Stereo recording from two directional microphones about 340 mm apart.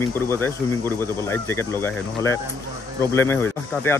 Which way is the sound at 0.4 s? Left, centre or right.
Centre.